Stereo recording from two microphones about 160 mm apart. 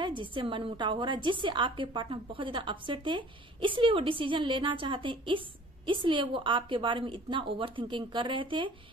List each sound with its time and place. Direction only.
0.0 s a woman's voice: 30° right (ahead or behind)